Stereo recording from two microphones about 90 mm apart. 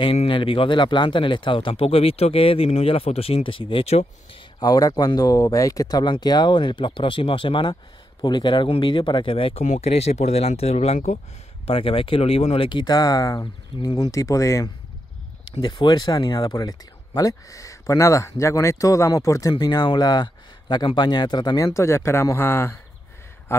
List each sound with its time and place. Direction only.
0.0 s speech: 70° left (ahead or behind)
4.6 s speech: 45° left (ahead or behind); by 7.7 s 70° left (ahead or behind)
8.2 s speech: 60° left (ahead or behind); by 12.8 s 80° left
12.8 s speech: 45° left (ahead or behind)
15.6 s speech: 60° left (ahead or behind); by 19.5 s 40° left (ahead or behind)
19.6 s speech: 50° left (ahead or behind)
21.7 s speech: 30° left (ahead or behind)